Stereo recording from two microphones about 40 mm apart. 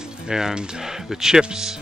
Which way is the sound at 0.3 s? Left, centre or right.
Centre.